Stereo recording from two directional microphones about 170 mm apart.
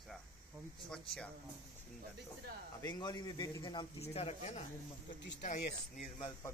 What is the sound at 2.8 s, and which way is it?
A man's voice, 25° left (ahead or behind).